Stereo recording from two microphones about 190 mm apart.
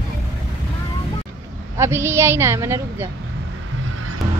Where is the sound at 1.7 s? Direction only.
15° right (ahead or behind).